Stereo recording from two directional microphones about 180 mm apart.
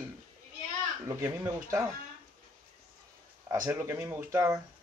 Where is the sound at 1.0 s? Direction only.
15° right (ahead or behind).